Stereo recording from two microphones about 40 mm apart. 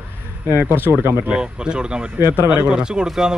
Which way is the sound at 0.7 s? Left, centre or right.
Right.